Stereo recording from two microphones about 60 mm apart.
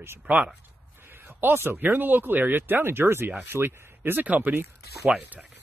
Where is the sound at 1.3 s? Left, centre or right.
Right.